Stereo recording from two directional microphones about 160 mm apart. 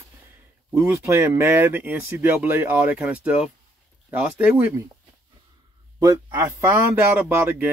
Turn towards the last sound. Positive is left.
turn(degrees=-15)  # may be behind; listen again after turning